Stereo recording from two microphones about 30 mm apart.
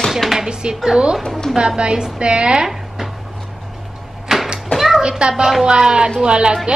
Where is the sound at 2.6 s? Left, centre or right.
Centre.